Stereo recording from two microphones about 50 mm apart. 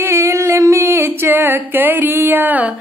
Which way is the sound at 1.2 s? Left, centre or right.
Right.